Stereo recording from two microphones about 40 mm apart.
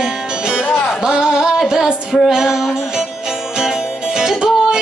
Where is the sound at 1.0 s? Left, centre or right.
Centre.